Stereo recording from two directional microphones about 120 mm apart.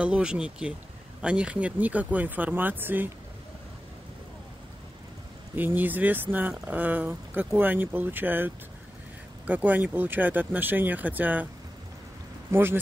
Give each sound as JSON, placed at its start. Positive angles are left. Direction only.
{"t": 0.0, "sound": "speech", "side_deg": -10}
{"t": 5.6, "sound": "speech", "side_deg": -15}
{"t": 12.4, "sound": "speech", "side_deg": -20}